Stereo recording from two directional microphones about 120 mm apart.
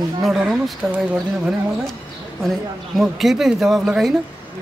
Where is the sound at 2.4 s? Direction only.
Centre (ahead or behind).